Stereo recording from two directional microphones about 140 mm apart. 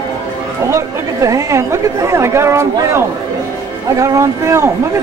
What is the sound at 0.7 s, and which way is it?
Speech, 20° right (ahead or behind).